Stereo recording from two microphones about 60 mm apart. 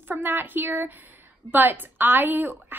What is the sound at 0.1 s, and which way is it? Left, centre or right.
A woman's voice, right.